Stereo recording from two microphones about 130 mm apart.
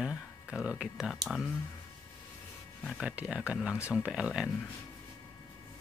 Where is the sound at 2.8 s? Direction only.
5° right (ahead or behind).